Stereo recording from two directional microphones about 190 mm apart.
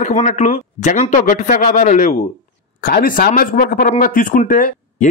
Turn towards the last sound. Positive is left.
turn(degrees=45)  # may be behind; listen again after turning